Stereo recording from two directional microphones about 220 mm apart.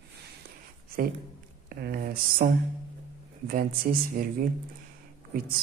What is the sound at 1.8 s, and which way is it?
Speech, 45° right (ahead or behind).